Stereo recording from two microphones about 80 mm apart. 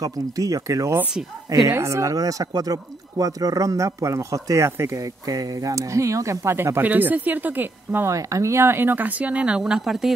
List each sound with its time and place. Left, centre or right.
0.0 s speech: right
6.5 s speech: right
8.1 s speech: right; by 10.1 s centre